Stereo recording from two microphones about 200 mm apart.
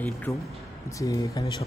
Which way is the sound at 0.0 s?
10° left (ahead or behind).